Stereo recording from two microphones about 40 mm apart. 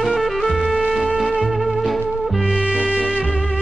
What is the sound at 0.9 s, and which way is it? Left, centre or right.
Music, centre.